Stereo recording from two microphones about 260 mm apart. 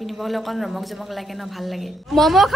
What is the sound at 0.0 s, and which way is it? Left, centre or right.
Speech, centre.